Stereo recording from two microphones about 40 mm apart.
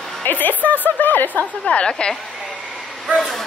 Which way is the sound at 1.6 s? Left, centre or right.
Left.